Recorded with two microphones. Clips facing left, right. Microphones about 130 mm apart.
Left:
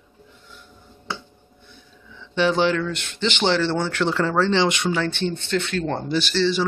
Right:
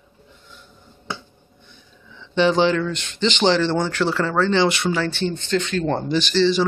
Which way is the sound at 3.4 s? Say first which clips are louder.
Right 2 dB; 15° right (ahead or behind).